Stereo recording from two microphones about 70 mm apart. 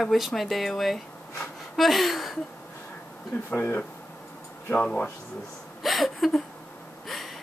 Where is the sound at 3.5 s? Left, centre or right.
Left.